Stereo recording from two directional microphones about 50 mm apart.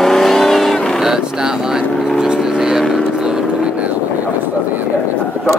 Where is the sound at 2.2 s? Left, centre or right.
Centre.